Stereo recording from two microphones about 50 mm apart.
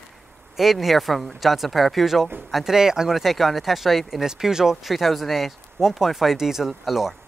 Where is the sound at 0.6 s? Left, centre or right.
Centre.